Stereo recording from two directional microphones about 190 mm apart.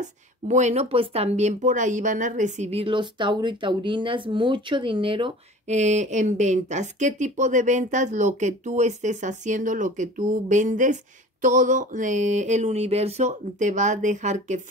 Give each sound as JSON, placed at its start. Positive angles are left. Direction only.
{"t": 0.0, "sound": "speech", "side_deg": -40}